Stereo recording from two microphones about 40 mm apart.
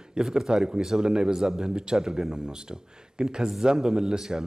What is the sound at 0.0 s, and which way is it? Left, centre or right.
A man's voice, centre.